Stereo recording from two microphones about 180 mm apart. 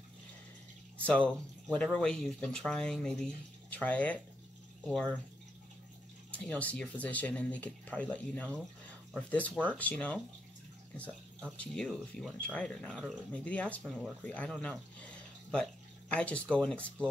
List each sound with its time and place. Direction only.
1.0 s speech: 5° left (ahead or behind)
6.3 s speech: 5° left (ahead or behind)
11.5 s speech: 5° left (ahead or behind)